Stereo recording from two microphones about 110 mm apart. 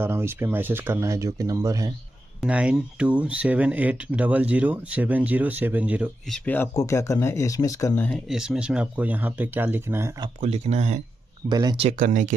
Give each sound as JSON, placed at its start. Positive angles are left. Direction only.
{"t": 0.0, "sound": "speech", "side_deg": -20}
{"t": 2.4, "sound": "speech", "side_deg": -10}
{"t": 6.3, "sound": "speech", "side_deg": 15}
{"t": 6.7, "sound": "speech", "side_deg": 30}
{"t": 7.9, "sound": "speech", "side_deg": 15}
{"t": 8.3, "sound": "speech", "side_deg": -5}
{"t": 10.4, "sound": "speech", "side_deg": -80}
{"t": 11.4, "sound": "speech", "side_deg": -40}